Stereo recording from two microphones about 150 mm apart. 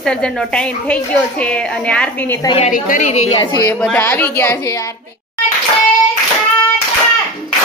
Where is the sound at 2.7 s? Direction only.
65° left (ahead or behind); by 3.5 s 45° left (ahead or behind).